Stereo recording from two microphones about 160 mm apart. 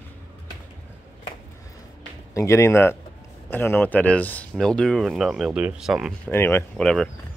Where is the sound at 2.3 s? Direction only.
20° left (ahead or behind); by 6.2 s centre (ahead or behind).